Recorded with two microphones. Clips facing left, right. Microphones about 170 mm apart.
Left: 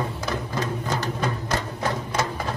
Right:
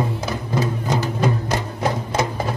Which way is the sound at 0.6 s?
10° right (ahead or behind).